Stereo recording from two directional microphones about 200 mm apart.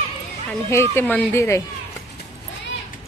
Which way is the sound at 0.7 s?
10° left (ahead or behind).